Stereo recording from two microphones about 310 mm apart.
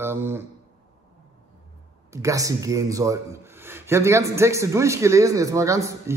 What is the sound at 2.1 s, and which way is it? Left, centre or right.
A man's voice, centre.